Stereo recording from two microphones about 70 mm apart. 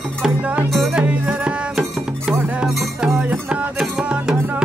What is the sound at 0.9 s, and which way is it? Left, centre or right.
Music, centre.